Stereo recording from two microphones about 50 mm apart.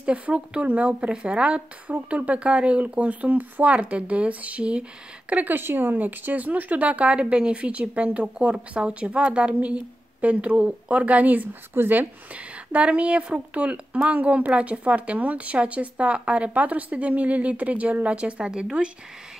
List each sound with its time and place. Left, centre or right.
0.0 s speech: right
5.5 s speech: right
11.7 s speech: right
12.7 s speech: right